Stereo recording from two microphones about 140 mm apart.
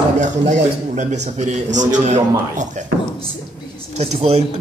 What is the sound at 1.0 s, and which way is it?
A man's voice, 55° right (ahead or behind).